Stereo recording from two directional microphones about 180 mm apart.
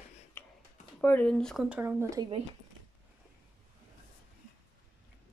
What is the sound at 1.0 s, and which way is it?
Speech, 10° left (ahead or behind).